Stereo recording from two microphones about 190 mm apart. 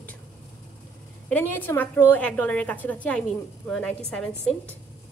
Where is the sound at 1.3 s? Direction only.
10° left (ahead or behind).